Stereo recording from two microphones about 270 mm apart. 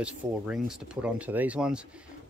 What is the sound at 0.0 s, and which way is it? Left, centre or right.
Speech, centre.